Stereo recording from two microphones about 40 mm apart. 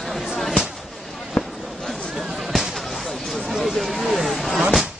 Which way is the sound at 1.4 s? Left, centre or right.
Left.